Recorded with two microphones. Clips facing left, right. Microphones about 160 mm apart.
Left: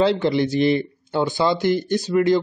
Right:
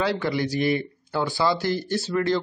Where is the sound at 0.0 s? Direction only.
25° left (ahead or behind).